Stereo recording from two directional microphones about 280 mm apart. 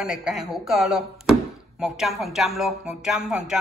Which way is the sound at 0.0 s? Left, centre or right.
Centre.